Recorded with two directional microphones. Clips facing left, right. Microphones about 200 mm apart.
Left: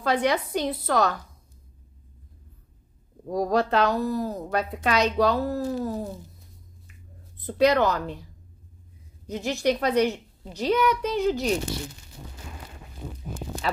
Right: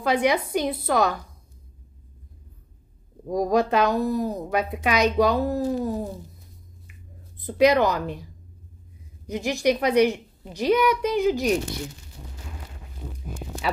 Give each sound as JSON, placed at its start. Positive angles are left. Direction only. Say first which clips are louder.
{"t": 0.0, "sound": "a woman's voice", "louder": "right 2 dB", "side_deg": -10}
{"t": 3.3, "sound": "a woman's voice", "louder": "right 2 dB", "side_deg": -15}
{"t": 7.4, "sound": "a woman's voice", "louder": "right 2 dB", "side_deg": -15}
{"t": 9.3, "sound": "a woman's voice", "louder": "right 2 dB", "side_deg": -15}